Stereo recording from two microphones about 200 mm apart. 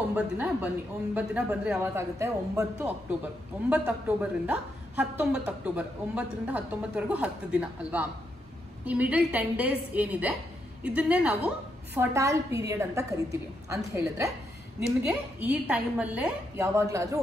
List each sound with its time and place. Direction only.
0.1 s a woman's voice: 10° right (ahead or behind)
15.4 s a woman's voice: 10° right (ahead or behind)